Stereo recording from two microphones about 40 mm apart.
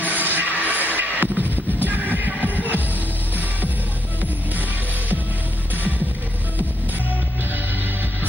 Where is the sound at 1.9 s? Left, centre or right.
Right.